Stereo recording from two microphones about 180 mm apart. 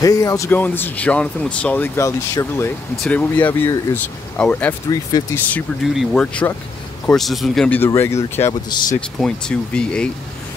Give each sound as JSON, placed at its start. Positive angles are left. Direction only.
{"t": 0.0, "sound": "speech", "side_deg": 20}
{"t": 4.8, "sound": "speech", "side_deg": 20}
{"t": 5.9, "sound": "speech", "side_deg": 5}
{"t": 9.2, "sound": "speech", "side_deg": 5}